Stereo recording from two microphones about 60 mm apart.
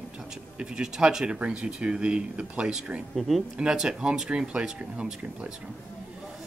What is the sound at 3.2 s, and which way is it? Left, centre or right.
Speech, centre.